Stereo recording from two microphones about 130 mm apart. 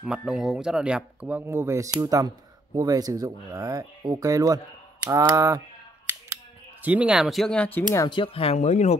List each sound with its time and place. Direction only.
0.0 s speech: 5° right (ahead or behind); by 5.6 s 25° right (ahead or behind)
6.0 s scissors: 20° right (ahead or behind); by 7.8 s 10° left (ahead or behind)
8.1 s speech: 40° left (ahead or behind)
8.5 s speech: 60° left (ahead or behind)